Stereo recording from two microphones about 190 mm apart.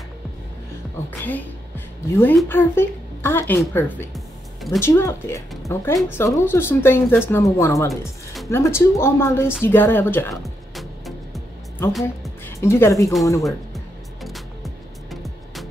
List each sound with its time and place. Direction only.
2.0 s speech: 15° left (ahead or behind)
10.3 s music: centre (ahead or behind)
12.4 s speech: 15° left (ahead or behind)
13.7 s music: centre (ahead or behind)